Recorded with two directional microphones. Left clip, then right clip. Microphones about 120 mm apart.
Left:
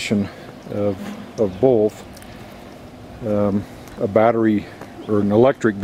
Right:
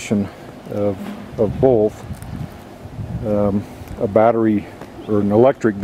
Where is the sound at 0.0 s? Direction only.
10° left (ahead or behind).